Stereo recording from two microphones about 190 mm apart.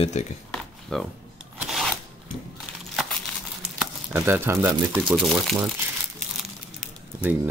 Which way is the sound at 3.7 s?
10° right (ahead or behind).